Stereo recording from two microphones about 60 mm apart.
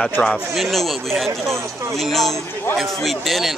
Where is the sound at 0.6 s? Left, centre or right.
Centre.